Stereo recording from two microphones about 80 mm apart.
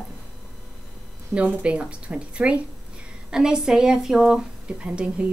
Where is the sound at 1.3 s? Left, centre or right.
Centre.